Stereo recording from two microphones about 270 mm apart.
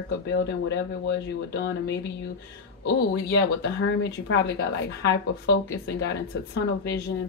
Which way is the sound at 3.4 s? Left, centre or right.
Left.